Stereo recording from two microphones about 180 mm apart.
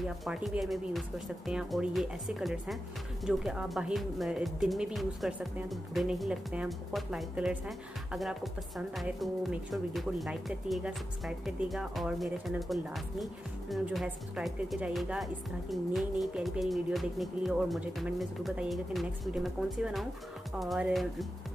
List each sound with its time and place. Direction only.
0.0 s speech: centre (ahead or behind)